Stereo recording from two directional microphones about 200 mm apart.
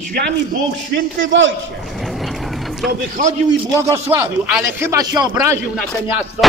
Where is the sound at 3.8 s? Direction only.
15° right (ahead or behind).